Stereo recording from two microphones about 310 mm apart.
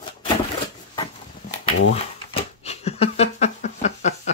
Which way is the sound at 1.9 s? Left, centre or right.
Centre.